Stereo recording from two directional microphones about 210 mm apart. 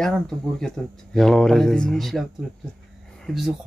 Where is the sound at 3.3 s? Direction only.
Centre (ahead or behind).